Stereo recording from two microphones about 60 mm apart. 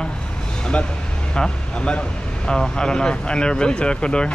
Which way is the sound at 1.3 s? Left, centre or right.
Centre.